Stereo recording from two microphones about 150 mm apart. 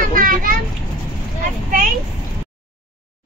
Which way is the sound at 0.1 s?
65° right (ahead or behind).